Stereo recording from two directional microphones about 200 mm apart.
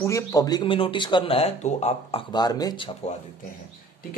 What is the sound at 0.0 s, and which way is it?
Speech, 15° left (ahead or behind).